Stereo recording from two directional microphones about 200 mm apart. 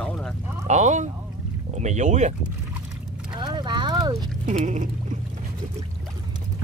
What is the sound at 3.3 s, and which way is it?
Horse, 20° right (ahead or behind).